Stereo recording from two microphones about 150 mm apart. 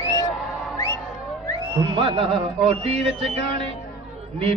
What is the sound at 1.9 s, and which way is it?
Music, 35° right (ahead or behind).